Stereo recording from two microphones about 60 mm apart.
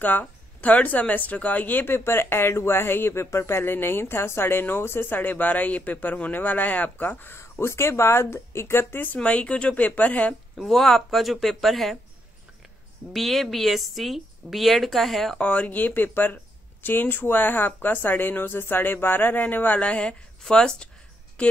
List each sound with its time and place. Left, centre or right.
0.0 s speech: left
7.6 s speech: left
9.1 s speech: left
10.5 s a woman's voice: centre
13.1 s a woman's voice: centre
15.3 s a woman's voice: left